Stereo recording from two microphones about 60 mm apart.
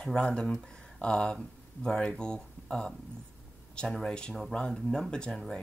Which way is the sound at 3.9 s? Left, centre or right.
Centre.